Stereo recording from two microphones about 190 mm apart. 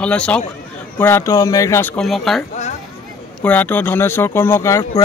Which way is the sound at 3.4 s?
10° left (ahead or behind).